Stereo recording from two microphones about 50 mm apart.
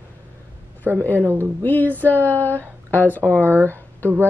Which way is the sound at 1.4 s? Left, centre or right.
Left.